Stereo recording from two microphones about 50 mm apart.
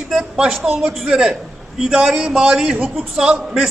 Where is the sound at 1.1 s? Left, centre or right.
Centre.